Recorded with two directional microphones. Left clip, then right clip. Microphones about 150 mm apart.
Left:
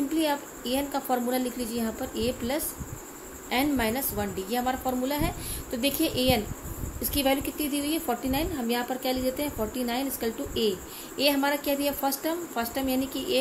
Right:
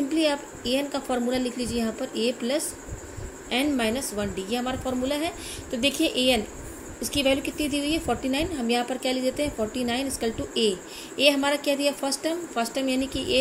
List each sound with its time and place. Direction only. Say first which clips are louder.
0.1 s a woman's voice: right 3 dB; 15° right (ahead or behind)